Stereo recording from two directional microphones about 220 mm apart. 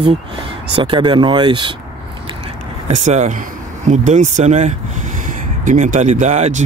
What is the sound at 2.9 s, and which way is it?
Speech, 30° right (ahead or behind).